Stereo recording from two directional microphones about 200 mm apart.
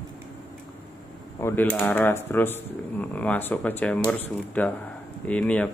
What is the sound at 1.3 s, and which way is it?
Speech, 10° left (ahead or behind).